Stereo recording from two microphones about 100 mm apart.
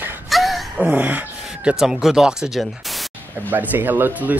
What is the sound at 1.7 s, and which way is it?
Speech, 5° right (ahead or behind).